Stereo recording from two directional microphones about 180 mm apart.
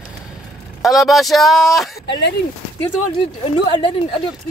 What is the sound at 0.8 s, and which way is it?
Speech, centre (ahead or behind).